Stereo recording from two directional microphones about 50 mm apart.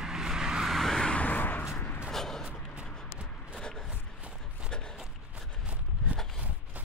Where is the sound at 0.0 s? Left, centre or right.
Centre.